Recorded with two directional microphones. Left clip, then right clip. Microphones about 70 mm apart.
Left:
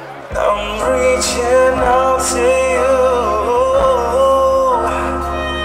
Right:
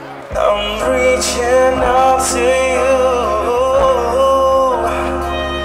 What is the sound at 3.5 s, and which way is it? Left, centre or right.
Music, left.